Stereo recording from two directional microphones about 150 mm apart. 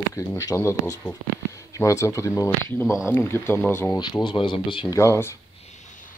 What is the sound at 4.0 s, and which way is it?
Speech, 30° left (ahead or behind).